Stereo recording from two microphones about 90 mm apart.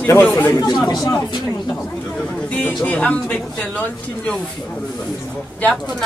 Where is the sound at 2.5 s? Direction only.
20° left (ahead or behind).